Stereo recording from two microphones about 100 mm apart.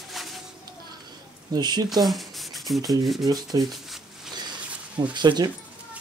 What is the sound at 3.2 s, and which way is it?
Speech, 40° right (ahead or behind).